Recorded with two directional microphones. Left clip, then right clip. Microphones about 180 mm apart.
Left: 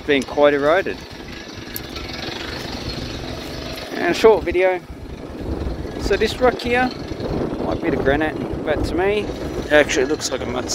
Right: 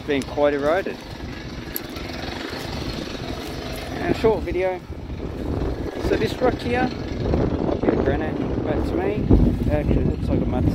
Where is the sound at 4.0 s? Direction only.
35° left (ahead or behind).